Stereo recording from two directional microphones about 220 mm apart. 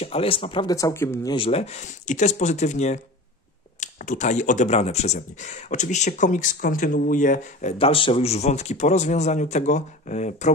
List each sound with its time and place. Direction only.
0.0 s speech: 25° left (ahead or behind)